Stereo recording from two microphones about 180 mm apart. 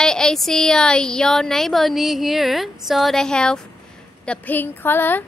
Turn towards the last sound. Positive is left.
turn(degrees=10)  # may be behind; listen again after turning